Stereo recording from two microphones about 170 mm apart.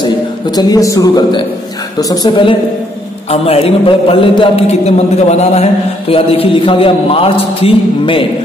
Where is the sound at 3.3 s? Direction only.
35° left (ahead or behind).